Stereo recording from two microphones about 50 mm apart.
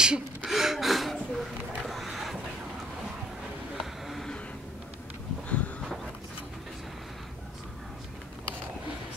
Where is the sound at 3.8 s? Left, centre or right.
Centre.